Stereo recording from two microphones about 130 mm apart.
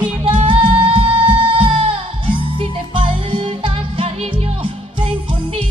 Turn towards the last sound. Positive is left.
turn(degrees=-45)  # may be behind; listen again after turning